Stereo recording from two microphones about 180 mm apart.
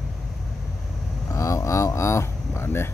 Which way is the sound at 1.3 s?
15° left (ahead or behind).